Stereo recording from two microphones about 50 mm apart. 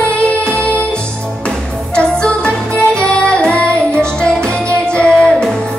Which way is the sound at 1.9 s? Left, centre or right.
Left.